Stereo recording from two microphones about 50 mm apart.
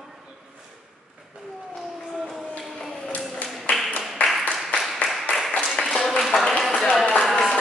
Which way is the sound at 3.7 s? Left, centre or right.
Left.